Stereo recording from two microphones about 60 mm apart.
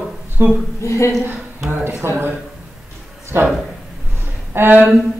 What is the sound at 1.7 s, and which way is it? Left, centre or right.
Speech, right.